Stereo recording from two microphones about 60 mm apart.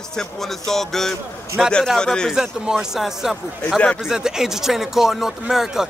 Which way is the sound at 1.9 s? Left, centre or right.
Centre.